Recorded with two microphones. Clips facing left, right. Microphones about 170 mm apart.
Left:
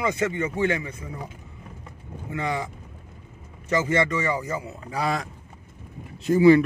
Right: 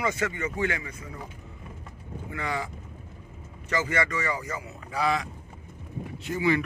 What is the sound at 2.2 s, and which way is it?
A man's voice, 20° left (ahead or behind).